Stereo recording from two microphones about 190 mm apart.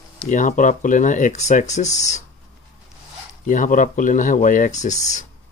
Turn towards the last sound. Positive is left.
turn(degrees=40)  # may be behind; listen again after turning